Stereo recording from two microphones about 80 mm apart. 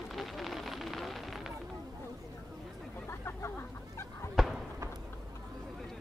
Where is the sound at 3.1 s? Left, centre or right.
Left.